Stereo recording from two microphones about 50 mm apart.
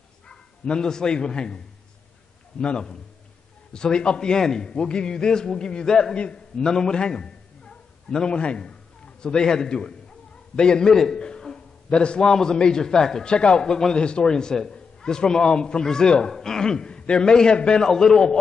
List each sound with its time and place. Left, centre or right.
0.3 s speech: centre
2.6 s a man's voice: centre